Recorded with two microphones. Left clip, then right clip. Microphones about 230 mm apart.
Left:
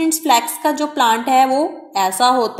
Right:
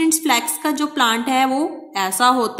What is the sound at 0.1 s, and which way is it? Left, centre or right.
A woman's voice, centre.